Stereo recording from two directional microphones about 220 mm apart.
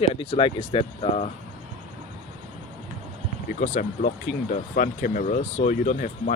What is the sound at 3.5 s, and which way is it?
Speech, 35° left (ahead or behind).